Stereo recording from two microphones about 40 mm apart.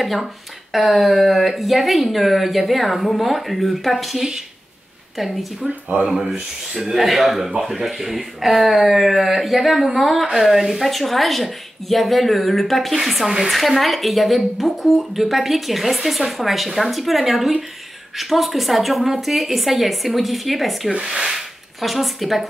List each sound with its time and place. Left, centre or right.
0.0 s speech: centre
20.9 s speech: right
21.3 s speech: centre